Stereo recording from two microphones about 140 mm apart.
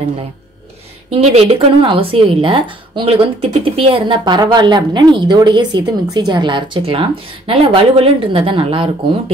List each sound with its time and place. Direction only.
1.1 s speech: 45° right (ahead or behind)